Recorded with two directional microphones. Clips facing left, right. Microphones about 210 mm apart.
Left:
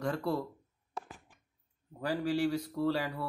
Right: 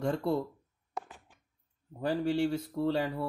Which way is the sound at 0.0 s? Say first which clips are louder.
Right 3 dB; 25° right (ahead or behind).